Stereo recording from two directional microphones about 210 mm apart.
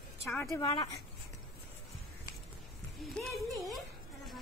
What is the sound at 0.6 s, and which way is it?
Speech, 25° left (ahead or behind).